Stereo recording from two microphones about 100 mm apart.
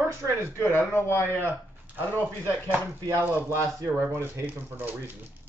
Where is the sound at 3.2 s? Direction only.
20° right (ahead or behind).